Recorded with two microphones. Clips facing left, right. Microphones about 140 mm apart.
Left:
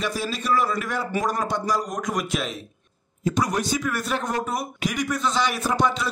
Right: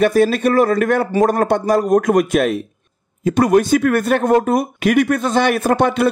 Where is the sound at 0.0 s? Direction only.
55° right (ahead or behind).